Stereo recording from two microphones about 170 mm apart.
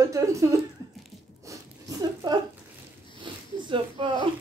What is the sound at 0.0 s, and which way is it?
Speech, 20° right (ahead or behind).